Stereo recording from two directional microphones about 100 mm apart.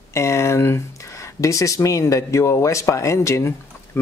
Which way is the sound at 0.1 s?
30° left (ahead or behind).